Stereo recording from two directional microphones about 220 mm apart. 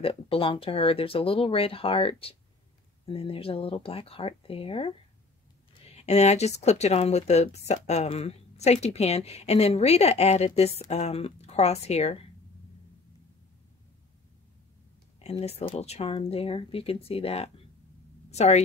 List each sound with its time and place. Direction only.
0.0 s speech: 25° left (ahead or behind)
15.1 s a woman's voice: 30° left (ahead or behind)